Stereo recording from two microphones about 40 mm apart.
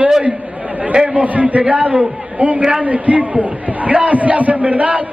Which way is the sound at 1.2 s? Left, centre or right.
Right.